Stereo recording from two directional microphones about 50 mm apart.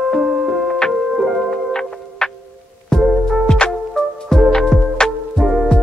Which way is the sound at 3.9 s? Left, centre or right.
Centre.